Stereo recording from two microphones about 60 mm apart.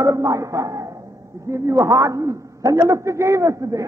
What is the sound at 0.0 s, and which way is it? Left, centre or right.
A man's voice, right.